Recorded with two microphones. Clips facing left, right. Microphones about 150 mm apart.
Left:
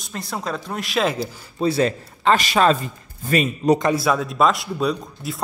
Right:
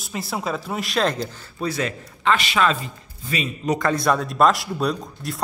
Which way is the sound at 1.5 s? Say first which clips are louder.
Left 6 dB; 30° left (ahead or behind).